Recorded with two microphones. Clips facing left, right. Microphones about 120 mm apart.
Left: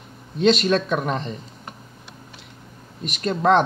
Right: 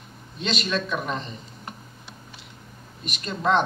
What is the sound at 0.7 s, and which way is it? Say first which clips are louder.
Speech: left 6 dB; 50° left (ahead or behind).